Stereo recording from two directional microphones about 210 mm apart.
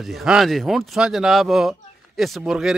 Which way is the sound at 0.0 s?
Centre (ahead or behind).